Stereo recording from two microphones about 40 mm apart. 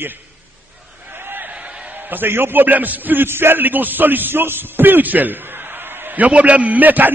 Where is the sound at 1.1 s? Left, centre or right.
Right.